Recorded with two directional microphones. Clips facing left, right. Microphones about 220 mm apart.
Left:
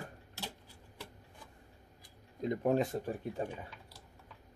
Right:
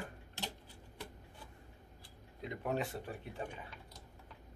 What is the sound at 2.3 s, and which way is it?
Speech, 40° left (ahead or behind).